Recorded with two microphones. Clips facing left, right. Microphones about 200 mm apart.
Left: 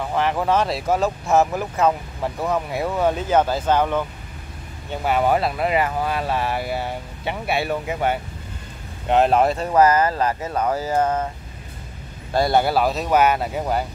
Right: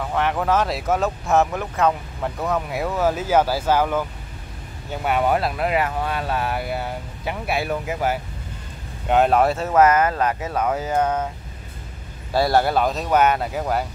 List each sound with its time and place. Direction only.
0.0 s speech: centre (ahead or behind)
12.3 s speech: 5° right (ahead or behind)